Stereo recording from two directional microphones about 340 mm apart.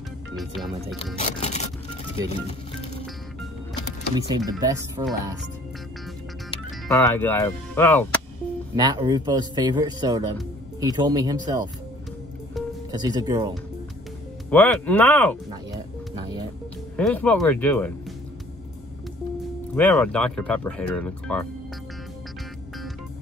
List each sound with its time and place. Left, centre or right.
0.4 s speech: centre
1.2 s scrape: centre
2.2 s speech: centre
4.5 s speech: centre
6.9 s speech: centre
8.7 s speech: centre
12.9 s speech: centre
14.5 s speech: centre
16.9 s speech: centre
19.7 s speech: centre